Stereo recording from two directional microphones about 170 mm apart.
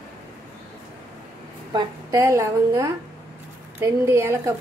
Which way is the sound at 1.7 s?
20° right (ahead or behind).